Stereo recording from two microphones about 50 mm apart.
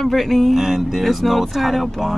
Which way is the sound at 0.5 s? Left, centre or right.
Centre.